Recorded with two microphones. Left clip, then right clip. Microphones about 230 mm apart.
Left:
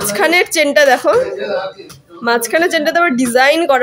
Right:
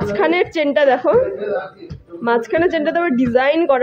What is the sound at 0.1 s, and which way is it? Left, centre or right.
Speech, centre.